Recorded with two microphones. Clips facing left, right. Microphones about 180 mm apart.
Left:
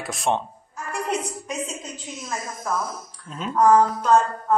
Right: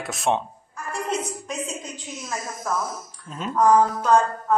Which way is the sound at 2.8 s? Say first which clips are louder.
Even; 55° left (ahead or behind).